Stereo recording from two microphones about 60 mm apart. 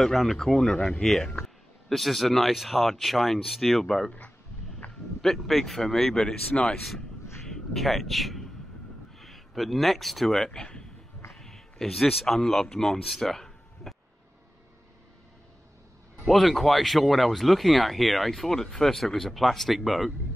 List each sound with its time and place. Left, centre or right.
0.0 s speech: centre
4.8 s a sound: left
5.2 s speech: centre
16.3 s speech: centre